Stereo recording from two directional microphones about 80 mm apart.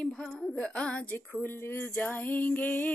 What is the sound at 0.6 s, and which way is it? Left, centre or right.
Speech, centre.